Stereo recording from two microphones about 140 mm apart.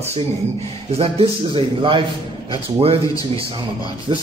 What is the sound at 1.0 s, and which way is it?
A man's voice, 40° right (ahead or behind).